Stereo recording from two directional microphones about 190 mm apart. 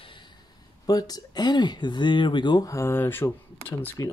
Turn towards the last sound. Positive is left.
turn(degrees=10)  # may be behind; listen again after turning